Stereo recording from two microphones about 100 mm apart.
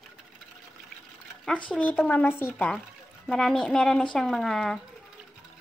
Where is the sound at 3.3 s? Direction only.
5° left (ahead or behind).